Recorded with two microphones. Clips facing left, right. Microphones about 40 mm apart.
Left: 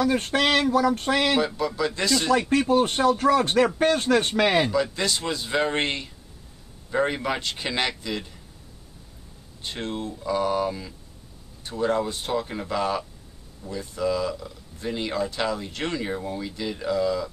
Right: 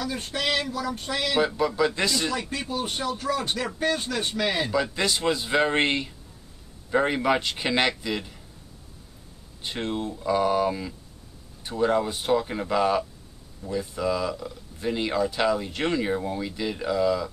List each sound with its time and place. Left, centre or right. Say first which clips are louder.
0.0 s speech: left 7 dB; left
1.4 s speech: right 2 dB; centre
2.7 s speech: left 8 dB; left
4.7 s speech: even; centre
9.6 s speech: right 2 dB; centre